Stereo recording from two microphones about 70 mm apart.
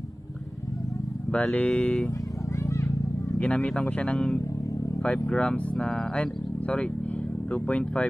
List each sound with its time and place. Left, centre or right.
1.3 s speech: centre
2.6 s a sound: left
3.3 s speech: centre
7.5 s speech: centre